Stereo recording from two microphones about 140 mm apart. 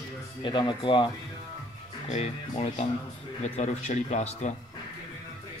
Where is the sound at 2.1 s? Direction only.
50° left (ahead or behind).